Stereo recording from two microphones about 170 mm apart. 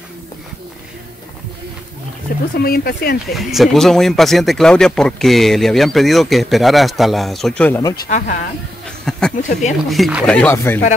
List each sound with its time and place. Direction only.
2.5 s speech: 65° left (ahead or behind)
3.3 s speech: centre (ahead or behind)
9.1 s a sound: 5° left (ahead or behind)
9.4 s speech: 45° left (ahead or behind)
9.8 s speech: centre (ahead or behind)